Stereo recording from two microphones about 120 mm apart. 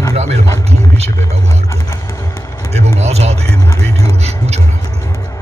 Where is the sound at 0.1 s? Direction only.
65° right (ahead or behind).